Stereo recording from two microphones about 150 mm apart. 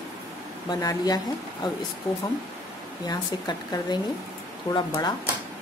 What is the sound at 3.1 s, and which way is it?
Speech, 30° left (ahead or behind).